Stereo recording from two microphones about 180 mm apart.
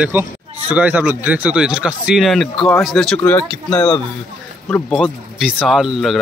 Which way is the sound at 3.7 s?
25° left (ahead or behind).